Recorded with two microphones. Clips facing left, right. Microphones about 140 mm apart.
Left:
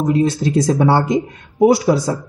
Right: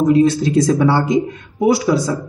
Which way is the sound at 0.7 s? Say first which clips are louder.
Even; 40° left (ahead or behind).